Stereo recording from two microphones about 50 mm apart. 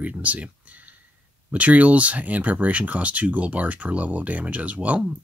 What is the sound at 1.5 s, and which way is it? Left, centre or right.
Speech, right.